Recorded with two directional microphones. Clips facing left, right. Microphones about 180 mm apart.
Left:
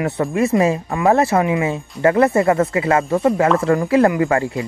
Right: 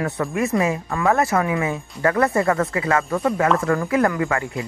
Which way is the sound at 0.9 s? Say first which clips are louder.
Left 3 dB; 20° left (ahead or behind).